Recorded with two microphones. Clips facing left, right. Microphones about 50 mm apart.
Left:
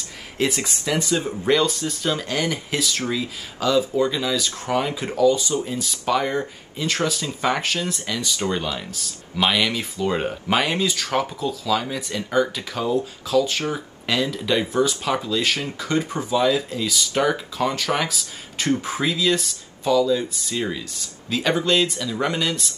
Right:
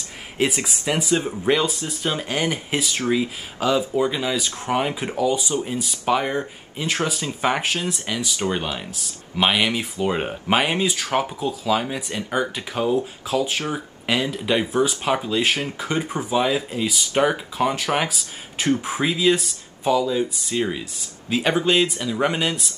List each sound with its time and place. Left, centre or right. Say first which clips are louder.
0.4 s speech: right 1 dB; centre
0.9 s speech: right 1 dB; right